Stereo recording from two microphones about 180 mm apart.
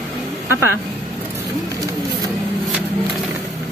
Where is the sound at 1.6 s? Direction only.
20° right (ahead or behind).